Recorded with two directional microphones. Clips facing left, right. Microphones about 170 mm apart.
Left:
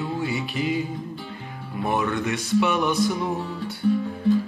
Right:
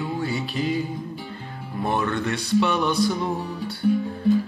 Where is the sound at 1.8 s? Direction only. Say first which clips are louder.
Even; 15° left (ahead or behind).